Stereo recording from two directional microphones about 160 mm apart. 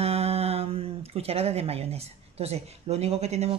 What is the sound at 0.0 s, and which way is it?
Speech, 40° right (ahead or behind).